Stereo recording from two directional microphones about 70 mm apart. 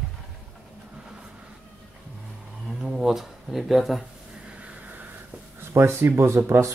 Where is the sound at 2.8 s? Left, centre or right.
Centre.